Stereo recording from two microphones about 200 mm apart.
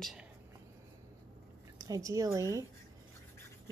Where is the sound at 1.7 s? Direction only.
15° right (ahead or behind).